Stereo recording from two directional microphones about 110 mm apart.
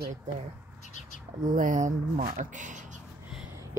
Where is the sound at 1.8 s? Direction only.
90° right.